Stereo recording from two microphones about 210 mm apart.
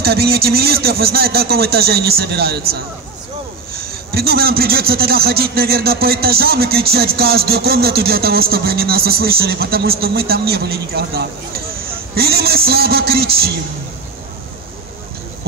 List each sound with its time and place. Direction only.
0.0 s a man's voice: 50° right (ahead or behind)
3.7 s a man's voice: 45° right (ahead or behind)